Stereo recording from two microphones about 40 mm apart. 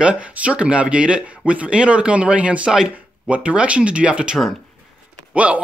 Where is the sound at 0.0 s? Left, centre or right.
Right.